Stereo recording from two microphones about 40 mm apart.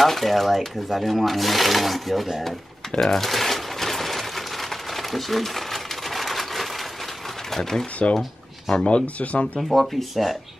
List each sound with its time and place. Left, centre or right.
0.0 s speech: centre
3.0 s a sound: centre
7.5 s speech: centre
8.7 s speech: left
9.6 s speech: centre